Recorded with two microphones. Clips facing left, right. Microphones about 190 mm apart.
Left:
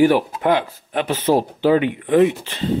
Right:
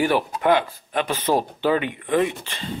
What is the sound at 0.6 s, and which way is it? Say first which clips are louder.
Speech: left 2 dB; 10° left (ahead or behind).